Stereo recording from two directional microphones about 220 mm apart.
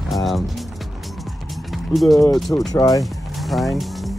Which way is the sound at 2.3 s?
Centre (ahead or behind).